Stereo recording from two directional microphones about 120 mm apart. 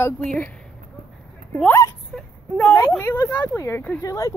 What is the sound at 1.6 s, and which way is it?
Speech, 20° left (ahead or behind).